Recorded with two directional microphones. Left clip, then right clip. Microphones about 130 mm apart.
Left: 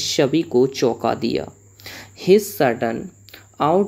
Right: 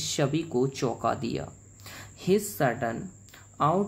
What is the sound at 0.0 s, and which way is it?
Speech, 15° left (ahead or behind).